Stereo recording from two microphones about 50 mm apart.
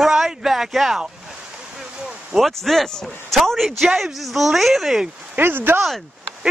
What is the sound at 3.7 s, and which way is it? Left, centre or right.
Speech, centre.